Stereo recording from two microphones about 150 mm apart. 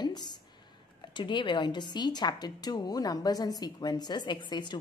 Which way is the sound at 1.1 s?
30° left (ahead or behind).